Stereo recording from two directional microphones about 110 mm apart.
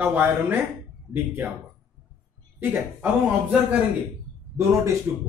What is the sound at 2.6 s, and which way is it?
Speech, 15° right (ahead or behind).